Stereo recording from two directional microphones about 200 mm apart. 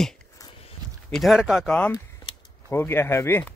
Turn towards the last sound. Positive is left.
turn(degrees=10)  # may be behind; listen again after turning